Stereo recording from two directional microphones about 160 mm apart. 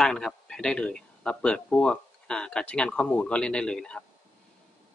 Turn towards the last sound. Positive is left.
turn(degrees=5)  # may be behind; listen again after turning